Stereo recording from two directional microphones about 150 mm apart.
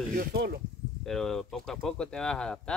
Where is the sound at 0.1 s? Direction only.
85° right.